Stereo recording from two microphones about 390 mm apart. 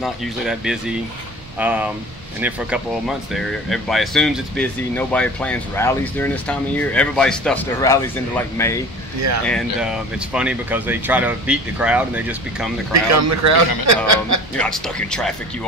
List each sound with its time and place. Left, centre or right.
0.0 s speech: centre
3.3 s speech: centre
12.9 s a man's voice: right
14.6 s speech: centre